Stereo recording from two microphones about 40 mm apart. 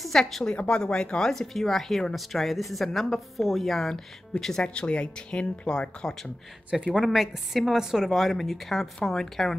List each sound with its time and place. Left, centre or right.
0.0 s a woman's voice: centre
0.7 s speech: left
1.1 s a woman's voice: centre
4.6 s speech: left
6.9 s a woman's voice: centre
8.1 s a woman's voice: centre